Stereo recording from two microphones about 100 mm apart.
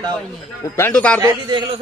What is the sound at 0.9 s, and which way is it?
Speech, 10° left (ahead or behind).